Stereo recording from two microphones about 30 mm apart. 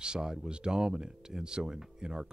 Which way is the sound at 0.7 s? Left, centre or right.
Centre.